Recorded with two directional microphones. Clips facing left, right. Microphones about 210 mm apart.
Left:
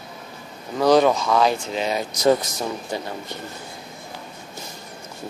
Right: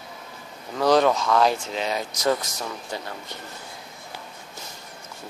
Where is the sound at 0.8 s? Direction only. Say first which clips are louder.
Left 3 dB; 5° left (ahead or behind).